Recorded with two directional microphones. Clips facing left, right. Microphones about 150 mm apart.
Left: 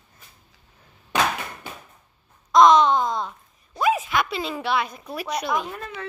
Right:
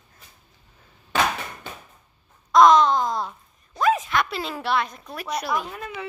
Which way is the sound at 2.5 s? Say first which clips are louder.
Even; centre (ahead or behind).